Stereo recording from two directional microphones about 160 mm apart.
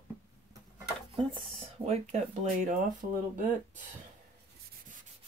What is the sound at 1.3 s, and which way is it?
Speech, 35° right (ahead or behind).